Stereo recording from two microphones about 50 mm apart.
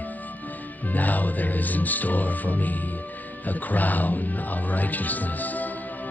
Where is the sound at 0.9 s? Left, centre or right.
Left.